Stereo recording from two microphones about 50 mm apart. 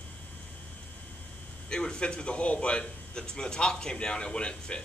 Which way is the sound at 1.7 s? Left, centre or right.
Centre.